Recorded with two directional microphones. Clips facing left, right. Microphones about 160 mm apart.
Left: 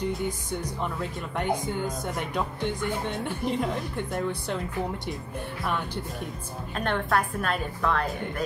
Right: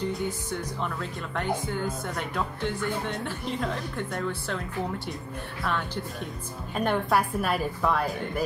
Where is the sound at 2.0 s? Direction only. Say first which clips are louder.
Left 1 dB; 15° left (ahead or behind).